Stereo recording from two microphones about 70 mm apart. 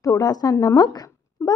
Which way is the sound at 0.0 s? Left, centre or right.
Left.